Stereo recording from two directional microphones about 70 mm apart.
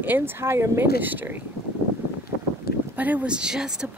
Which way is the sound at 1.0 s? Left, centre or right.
Right.